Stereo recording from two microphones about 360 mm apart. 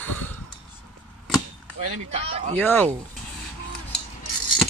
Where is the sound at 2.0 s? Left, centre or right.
Centre.